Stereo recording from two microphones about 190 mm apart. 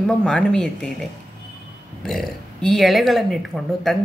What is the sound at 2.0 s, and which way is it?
A woman's voice, centre (ahead or behind).